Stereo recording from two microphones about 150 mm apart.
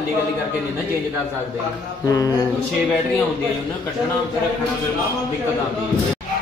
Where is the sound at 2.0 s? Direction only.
25° left (ahead or behind).